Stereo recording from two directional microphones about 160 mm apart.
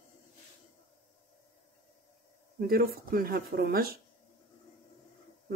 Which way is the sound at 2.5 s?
70° right (ahead or behind).